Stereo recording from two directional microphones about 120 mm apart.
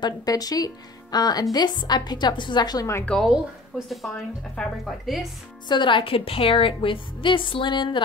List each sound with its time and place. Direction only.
0.0 s a woman's voice: 30° left (ahead or behind)
3.1 s speech: centre (ahead or behind)
5.7 s a woman's voice: 40° left (ahead or behind)